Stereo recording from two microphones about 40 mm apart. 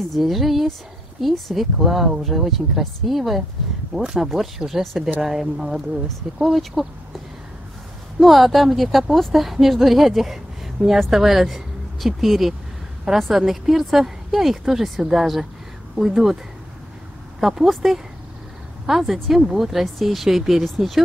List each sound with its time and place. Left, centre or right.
0.1 s speech: centre
8.2 s a woman's voice: centre
17.4 s speech: centre